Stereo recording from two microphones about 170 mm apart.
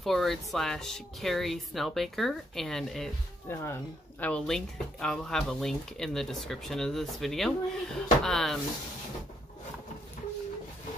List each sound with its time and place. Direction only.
0.0 s speech: centre (ahead or behind)
3.4 s speech: 15° left (ahead or behind)